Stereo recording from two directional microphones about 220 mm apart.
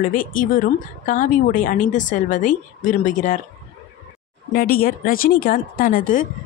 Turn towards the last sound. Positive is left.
turn(degrees=40)  # may be behind; listen again after turning